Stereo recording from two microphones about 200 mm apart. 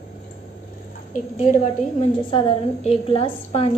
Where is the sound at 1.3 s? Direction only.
30° left (ahead or behind).